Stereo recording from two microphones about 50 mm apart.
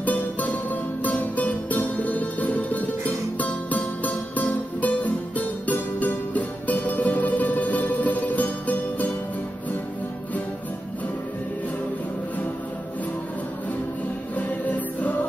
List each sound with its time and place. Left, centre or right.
0.0 s music: left
14.3 s music: left